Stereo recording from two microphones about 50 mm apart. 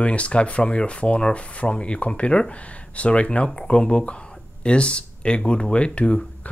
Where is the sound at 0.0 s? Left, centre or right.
Left.